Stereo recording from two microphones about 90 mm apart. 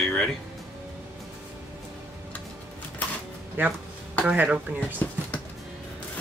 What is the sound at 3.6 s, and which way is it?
Speech, 20° right (ahead or behind).